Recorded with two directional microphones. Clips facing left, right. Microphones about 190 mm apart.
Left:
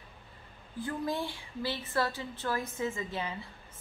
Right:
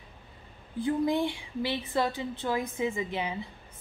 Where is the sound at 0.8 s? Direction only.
15° right (ahead or behind).